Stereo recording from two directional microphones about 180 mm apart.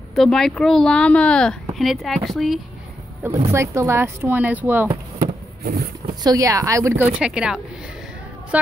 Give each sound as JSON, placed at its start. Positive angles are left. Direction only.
{"t": 0.1, "sound": "speech", "side_deg": 0}
{"t": 3.2, "sound": "speech", "side_deg": -10}
{"t": 5.6, "sound": "a sound", "side_deg": -55}
{"t": 6.2, "sound": "speech", "side_deg": -20}
{"t": 7.2, "sound": "speech", "side_deg": -5}